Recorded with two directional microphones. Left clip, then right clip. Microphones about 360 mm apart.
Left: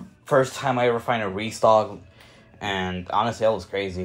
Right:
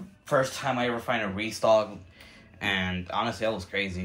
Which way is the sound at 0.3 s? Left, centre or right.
Centre.